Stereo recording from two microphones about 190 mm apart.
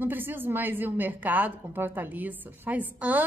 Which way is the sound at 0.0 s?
10° right (ahead or behind).